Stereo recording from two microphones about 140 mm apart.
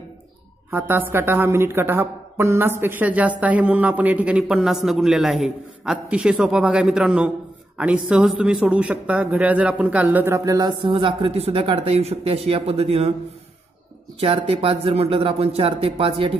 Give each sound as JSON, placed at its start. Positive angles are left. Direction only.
{"t": 0.7, "sound": "a woman's voice", "side_deg": -15}
{"t": 14.2, "sound": "speech", "side_deg": -40}